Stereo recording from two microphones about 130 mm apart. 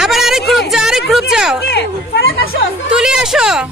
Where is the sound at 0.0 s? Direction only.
Centre (ahead or behind).